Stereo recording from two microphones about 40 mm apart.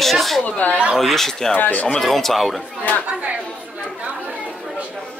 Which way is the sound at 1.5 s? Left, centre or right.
Left.